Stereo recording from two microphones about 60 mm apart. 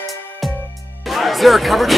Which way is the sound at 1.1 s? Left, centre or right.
Centre.